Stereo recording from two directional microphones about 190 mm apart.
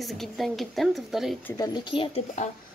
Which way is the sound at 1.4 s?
20° left (ahead or behind).